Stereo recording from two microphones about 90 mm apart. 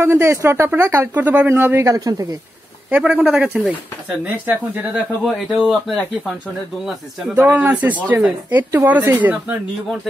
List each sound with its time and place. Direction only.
0.0 s speech: 25° right (ahead or behind)
1.5 s speech: 30° right (ahead or behind)
1.9 s speech: 40° right (ahead or behind)
2.9 s speech: 15° right (ahead or behind)
5.2 s speech: centre (ahead or behind)
7.3 s speech: 20° right (ahead or behind)